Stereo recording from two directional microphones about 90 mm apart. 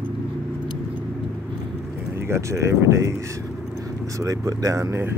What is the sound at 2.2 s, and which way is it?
Speech, 30° right (ahead or behind).